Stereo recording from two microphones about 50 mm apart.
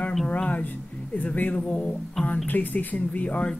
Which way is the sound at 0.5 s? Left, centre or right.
Left.